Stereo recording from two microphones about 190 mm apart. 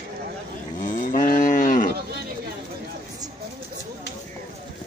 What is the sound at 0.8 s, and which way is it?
Cattle, 45° left (ahead or behind).